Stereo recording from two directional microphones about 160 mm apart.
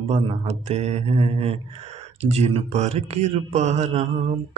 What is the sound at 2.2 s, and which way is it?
Speech, 40° right (ahead or behind).